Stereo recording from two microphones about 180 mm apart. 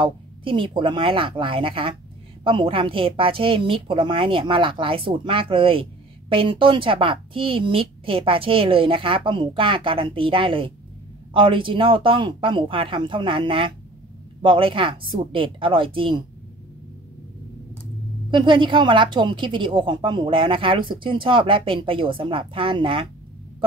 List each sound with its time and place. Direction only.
0.0 s a woman's voice: 30° right (ahead or behind)
18.3 s a woman's voice: 25° right (ahead or behind)